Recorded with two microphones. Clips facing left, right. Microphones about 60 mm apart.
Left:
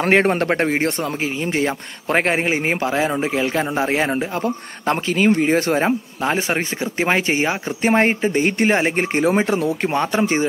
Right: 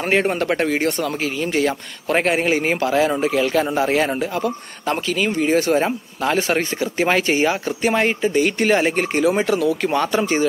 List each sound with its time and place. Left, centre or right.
0.0 s speech: left
4.4 s speech: left